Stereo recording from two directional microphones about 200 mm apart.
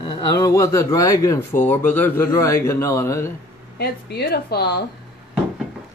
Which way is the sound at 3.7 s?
55° left (ahead or behind).